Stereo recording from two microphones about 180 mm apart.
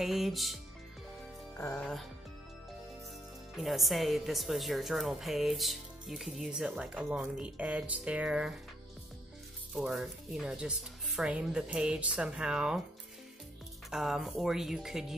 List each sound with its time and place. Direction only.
0.0 s a woman's voice: centre (ahead or behind)
1.6 s music: 10° left (ahead or behind)
3.5 s a woman's voice: centre (ahead or behind)
9.8 s a woman's voice: centre (ahead or behind)
13.8 s a woman's voice: centre (ahead or behind)